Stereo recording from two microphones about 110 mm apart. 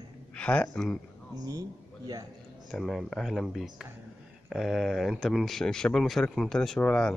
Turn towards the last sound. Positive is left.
turn(degrees=5)  # may be behind; listen again after turning